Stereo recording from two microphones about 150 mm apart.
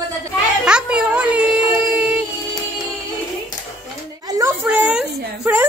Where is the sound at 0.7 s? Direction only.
5° right (ahead or behind).